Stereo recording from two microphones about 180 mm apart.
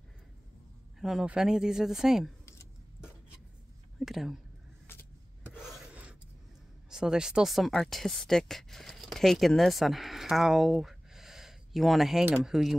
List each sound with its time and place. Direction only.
0.9 s speech: centre (ahead or behind)
4.0 s speech: centre (ahead or behind)
5.6 s filing: 5° right (ahead or behind)
6.9 s speech: 5° right (ahead or behind)